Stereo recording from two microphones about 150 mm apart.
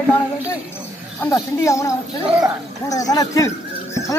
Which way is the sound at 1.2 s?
20° left (ahead or behind).